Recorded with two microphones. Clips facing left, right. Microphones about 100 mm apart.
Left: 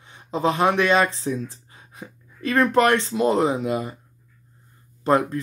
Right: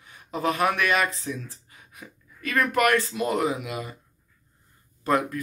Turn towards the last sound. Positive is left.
turn(degrees=30)  # may be behind; listen again after turning